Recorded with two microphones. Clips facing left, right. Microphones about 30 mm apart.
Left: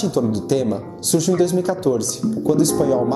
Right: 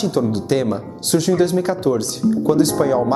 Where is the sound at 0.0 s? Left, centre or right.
Right.